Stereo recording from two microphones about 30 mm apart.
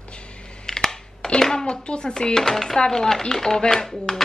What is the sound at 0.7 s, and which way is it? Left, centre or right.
Computer keyboard, centre.